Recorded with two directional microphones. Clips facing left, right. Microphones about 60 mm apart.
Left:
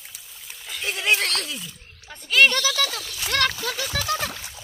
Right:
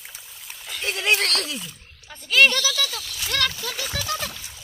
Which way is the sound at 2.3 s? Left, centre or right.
Centre.